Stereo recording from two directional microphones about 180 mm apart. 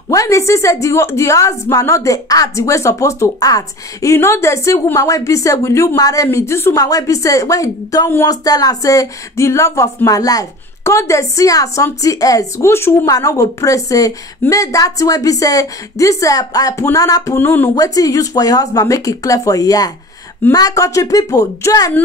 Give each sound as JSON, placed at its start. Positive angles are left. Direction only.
{"t": 0.1, "sound": "a woman's voice", "side_deg": 15}